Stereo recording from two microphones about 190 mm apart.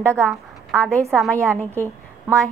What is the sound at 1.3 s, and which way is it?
A woman's voice, 15° right (ahead or behind).